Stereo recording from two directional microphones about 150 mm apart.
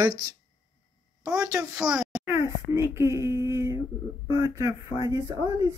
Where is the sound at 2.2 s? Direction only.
20° right (ahead or behind).